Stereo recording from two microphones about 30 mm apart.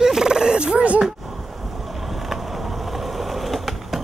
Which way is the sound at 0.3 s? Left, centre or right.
Right.